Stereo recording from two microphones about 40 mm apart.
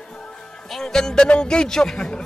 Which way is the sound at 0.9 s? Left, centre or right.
Centre.